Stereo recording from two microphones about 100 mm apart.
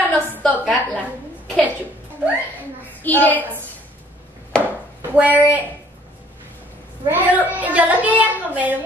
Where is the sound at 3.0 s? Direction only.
15° left (ahead or behind).